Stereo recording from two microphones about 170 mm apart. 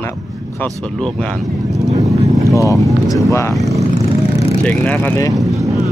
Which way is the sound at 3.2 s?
15° left (ahead or behind).